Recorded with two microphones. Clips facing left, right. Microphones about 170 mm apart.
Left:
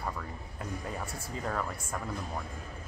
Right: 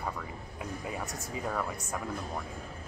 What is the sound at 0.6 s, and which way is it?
Speech, 5° right (ahead or behind).